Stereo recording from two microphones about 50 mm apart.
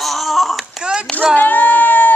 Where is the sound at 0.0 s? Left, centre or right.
Centre.